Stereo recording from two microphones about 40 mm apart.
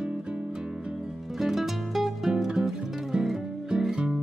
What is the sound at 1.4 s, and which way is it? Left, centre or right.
Music, centre.